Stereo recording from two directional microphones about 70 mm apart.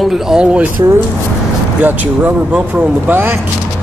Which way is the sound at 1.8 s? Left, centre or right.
Right.